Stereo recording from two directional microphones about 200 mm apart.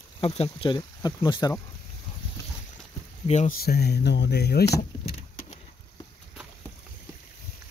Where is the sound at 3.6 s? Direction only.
55° left (ahead or behind).